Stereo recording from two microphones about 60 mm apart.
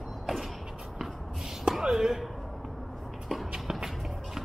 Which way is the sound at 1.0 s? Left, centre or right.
Centre.